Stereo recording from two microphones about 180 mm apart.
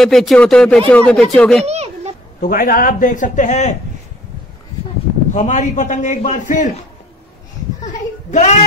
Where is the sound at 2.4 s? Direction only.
50° left (ahead or behind).